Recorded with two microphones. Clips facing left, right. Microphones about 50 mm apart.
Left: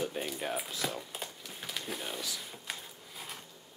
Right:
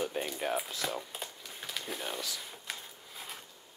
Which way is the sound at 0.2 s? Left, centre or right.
Centre.